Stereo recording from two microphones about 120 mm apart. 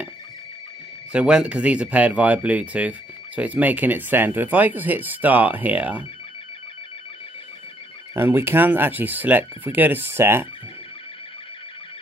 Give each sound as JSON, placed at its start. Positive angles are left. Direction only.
{"t": 1.1, "sound": "speech", "side_deg": -10}
{"t": 8.1, "sound": "speech", "side_deg": -20}